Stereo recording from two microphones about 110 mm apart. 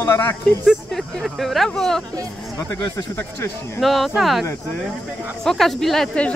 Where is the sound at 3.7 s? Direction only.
Centre (ahead or behind).